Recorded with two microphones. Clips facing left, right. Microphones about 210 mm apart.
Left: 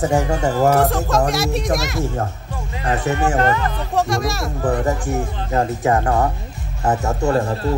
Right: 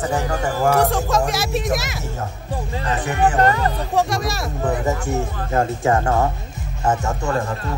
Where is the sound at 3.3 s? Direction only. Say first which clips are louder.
Right 1 dB; 40° right (ahead or behind).